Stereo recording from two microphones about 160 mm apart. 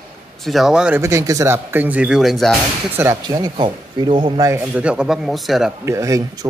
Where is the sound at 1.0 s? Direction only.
20° right (ahead or behind); by 2.5 s centre (ahead or behind).